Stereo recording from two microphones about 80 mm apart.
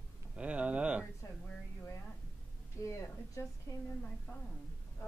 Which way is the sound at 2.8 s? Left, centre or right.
Left.